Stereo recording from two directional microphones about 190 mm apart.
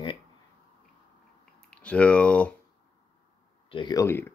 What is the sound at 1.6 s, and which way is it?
Speech, 5° left (ahead or behind).